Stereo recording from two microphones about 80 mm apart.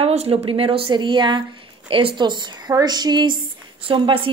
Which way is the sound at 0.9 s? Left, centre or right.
Right.